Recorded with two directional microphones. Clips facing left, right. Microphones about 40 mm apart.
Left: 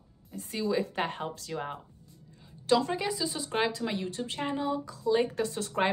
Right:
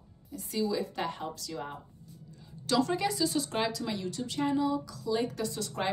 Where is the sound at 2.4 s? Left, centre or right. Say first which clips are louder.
Left 3 dB; left.